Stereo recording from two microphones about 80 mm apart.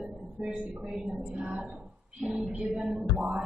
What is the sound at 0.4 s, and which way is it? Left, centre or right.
A woman's voice, centre.